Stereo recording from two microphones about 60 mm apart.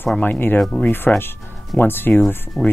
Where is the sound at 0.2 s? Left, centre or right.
Left.